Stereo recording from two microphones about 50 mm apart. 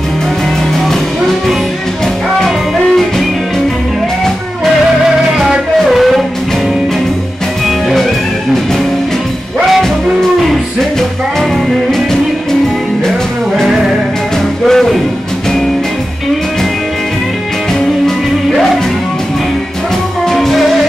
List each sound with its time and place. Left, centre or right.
5.4 s music: centre
7.6 s music: centre
10.4 s music: centre
14.7 s music: centre
20.2 s music: centre